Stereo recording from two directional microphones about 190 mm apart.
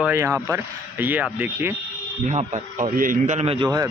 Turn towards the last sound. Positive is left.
turn(degrees=-25)  # may be behind; listen again after turning